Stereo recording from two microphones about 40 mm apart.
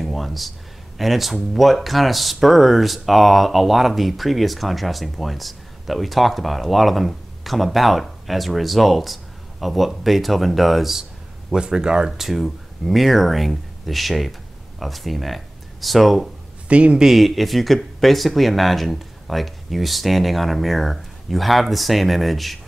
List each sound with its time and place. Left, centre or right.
0.0 s a sound: centre
0.9 s speech: centre
11.5 s speech: centre
12.1 s speech: centre
16.6 s a man's voice: right
17.0 s speech: centre